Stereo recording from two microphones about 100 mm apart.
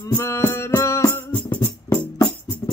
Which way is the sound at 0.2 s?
25° left (ahead or behind).